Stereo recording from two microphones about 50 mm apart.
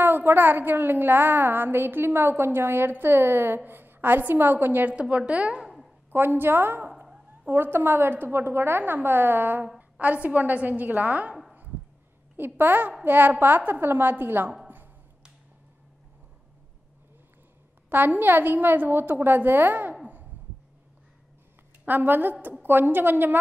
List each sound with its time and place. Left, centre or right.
0.0 s a woman's voice: right
5.1 s a woman's voice: right
5.6 s a sound: centre
6.1 s a woman's voice: right
9.8 s a woman's voice: right
12.4 s a woman's voice: right
17.8 s a woman's voice: right
21.8 s a woman's voice: right